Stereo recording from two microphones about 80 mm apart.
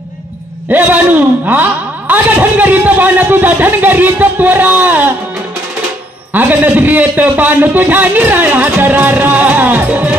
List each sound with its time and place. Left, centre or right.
0.7 s a man's voice: right
6.3 s a man's voice: right